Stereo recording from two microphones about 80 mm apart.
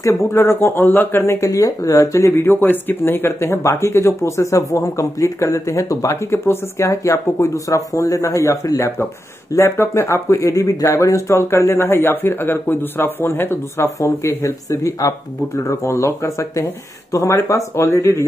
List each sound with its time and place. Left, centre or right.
0.0 s speech: left
0.4 s speech: left
6.3 s speech: left